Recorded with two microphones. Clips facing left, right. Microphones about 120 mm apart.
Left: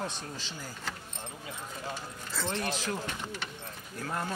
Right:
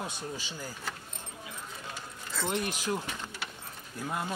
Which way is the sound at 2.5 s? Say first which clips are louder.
Right 2 dB; 15° right (ahead or behind).